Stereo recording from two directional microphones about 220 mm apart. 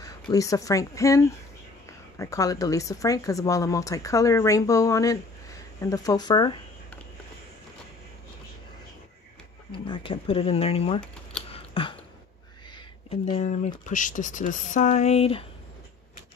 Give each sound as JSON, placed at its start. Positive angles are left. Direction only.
{"t": 0.0, "sound": "a woman's voice", "side_deg": 15}
{"t": 9.7, "sound": "speech", "side_deg": 20}
{"t": 11.4, "sound": "a sound", "side_deg": 25}
{"t": 13.8, "sound": "speech", "side_deg": 35}